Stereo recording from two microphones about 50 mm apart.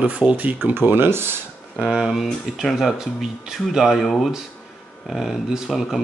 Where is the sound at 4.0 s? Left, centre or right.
Centre.